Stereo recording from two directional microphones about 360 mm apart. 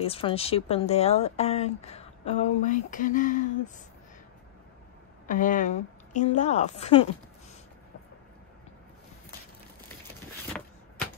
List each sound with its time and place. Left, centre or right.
0.0 s speech: centre
5.3 s a woman's voice: left